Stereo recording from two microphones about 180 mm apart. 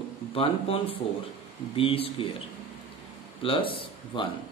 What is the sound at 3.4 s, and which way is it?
Speech, 30° left (ahead or behind).